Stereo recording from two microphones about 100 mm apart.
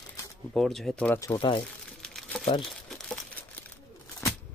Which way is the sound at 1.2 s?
35° left (ahead or behind).